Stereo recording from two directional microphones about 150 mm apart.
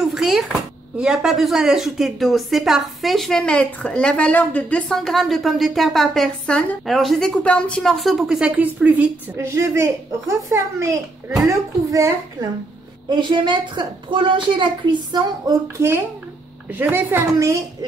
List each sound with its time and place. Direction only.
0.0 s a child's voice: centre (ahead or behind); by 15.5 s 30° right (ahead or behind)
15.8 s a woman's voice: 15° right (ahead or behind)